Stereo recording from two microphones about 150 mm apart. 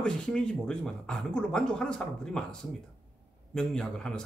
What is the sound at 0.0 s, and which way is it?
Speech, 5° left (ahead or behind).